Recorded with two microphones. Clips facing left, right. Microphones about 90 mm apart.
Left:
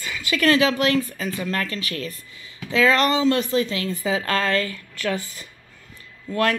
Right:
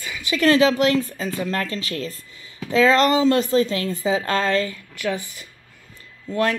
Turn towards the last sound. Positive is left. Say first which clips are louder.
# even
turn(degrees=-20)  # may be behind; listen again after turning